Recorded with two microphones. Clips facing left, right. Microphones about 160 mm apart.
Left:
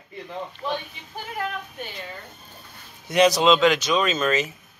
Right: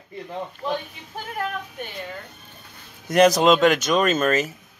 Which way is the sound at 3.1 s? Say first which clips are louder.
Right 2 dB; 45° right (ahead or behind).